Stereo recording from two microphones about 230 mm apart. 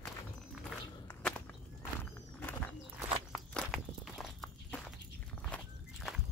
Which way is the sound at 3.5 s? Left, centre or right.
Centre.